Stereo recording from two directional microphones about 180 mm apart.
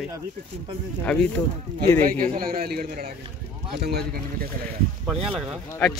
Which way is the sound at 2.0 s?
55° right (ahead or behind).